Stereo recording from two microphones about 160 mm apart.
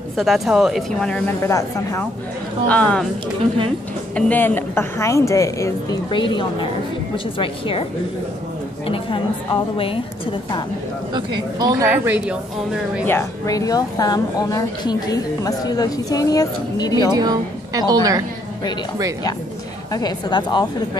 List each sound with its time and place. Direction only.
0.2 s speech: centre (ahead or behind)
1.4 s a woman's voice: 15° left (ahead or behind)
4.1 s a woman's voice: 10° left (ahead or behind)
6.0 s a woman's voice: 30° left (ahead or behind)
8.8 s a woman's voice: 35° left (ahead or behind)
11.5 s a woman's voice: 25° right (ahead or behind)
11.9 s speech: 10° right (ahead or behind)
13.0 s a woman's voice: 20° left (ahead or behind)
17.1 s a woman's voice: 25° right (ahead or behind)
19.9 s a woman's voice: 25° left (ahead or behind)